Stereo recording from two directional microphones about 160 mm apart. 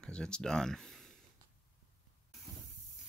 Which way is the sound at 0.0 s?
5° left (ahead or behind).